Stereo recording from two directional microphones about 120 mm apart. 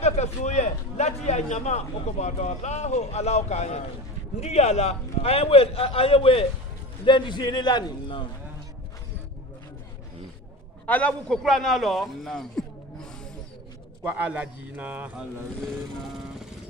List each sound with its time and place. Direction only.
0.0 s a man's voice: 70° left (ahead or behind); by 6.4 s 50° left (ahead or behind)
7.1 s a man's voice: 40° left (ahead or behind)
10.9 s a man's voice: 10° left (ahead or behind)
14.0 s a man's voice: 10° right (ahead or behind)
15.6 s vehicle: centre (ahead or behind)